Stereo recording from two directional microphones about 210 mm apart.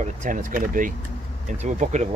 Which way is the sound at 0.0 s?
35° right (ahead or behind).